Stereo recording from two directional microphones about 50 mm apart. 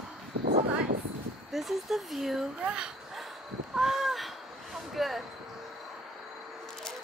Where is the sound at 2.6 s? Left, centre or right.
Centre.